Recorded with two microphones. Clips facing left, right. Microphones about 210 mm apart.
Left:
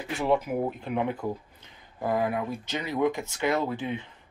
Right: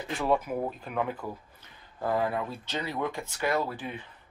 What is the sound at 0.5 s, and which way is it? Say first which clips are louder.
Speech: left 4 dB; 20° left (ahead or behind).